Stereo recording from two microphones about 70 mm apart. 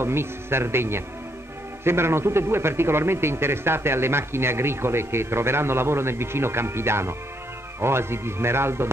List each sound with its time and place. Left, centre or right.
0.0 s a man's voice: right